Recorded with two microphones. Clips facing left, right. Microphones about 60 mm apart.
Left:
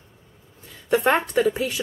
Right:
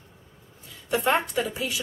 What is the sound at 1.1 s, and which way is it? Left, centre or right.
Speech, left.